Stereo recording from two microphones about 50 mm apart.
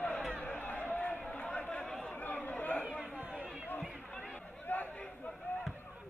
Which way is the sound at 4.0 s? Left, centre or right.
Left.